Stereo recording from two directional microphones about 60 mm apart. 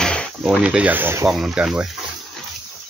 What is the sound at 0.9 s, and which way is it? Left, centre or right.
Speech, right.